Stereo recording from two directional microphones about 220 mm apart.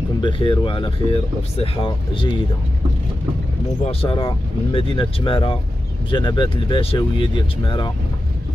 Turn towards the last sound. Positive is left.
turn(degrees=20)  # may be behind; listen again after turning